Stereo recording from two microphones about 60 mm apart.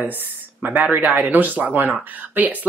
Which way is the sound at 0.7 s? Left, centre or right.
Right.